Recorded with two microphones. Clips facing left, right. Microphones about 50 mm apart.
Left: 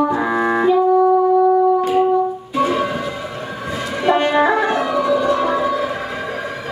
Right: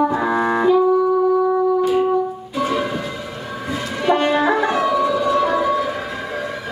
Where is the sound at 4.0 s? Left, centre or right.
Centre.